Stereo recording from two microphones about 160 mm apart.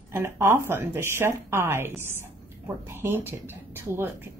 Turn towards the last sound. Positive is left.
turn(degrees=-15)  # may be behind; listen again after turning